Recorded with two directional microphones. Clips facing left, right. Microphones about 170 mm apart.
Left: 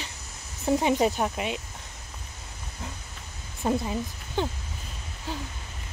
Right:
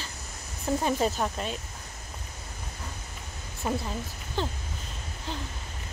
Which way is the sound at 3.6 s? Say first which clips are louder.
Left 4 dB; 15° left (ahead or behind).